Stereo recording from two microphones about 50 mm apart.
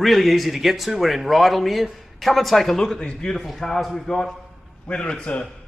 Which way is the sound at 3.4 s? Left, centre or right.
Centre.